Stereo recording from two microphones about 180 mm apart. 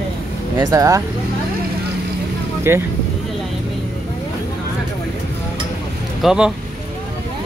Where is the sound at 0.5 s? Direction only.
20° right (ahead or behind).